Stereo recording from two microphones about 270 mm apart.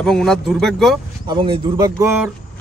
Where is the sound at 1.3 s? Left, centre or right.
Centre.